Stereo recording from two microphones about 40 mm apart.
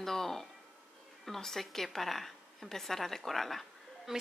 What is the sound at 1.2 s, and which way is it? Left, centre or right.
A woman's voice, centre.